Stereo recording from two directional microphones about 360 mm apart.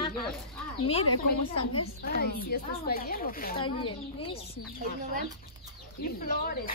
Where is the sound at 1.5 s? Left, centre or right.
Left.